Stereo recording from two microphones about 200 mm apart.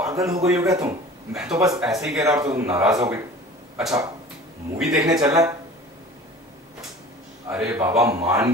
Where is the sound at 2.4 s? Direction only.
15° right (ahead or behind).